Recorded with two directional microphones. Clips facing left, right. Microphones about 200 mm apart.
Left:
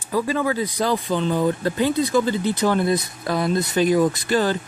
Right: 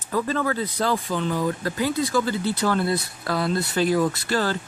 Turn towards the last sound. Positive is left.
turn(degrees=15)  # may be behind; listen again after turning